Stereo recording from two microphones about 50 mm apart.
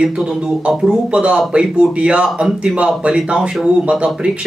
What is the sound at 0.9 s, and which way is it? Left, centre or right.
Speech, right.